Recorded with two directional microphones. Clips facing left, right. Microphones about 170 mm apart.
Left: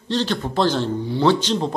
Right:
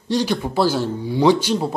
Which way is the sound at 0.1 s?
10° right (ahead or behind).